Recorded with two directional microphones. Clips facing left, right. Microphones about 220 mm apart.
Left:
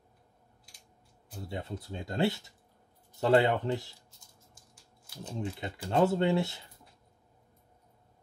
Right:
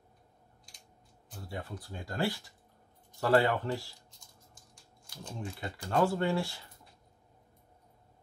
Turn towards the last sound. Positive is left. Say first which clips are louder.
# left 3 dB
turn(degrees=20)  # may be behind; listen again after turning